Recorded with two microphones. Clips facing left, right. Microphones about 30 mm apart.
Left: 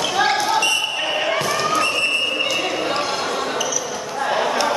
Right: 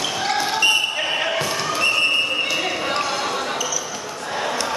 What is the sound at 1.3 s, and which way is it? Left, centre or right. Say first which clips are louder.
Basketball bounce: left 3 dB; centre.